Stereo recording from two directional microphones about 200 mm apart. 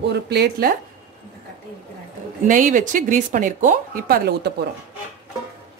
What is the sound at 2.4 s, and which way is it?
Speech, 40° right (ahead or behind).